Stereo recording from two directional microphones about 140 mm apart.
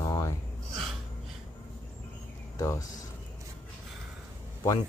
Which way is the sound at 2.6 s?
20° left (ahead or behind).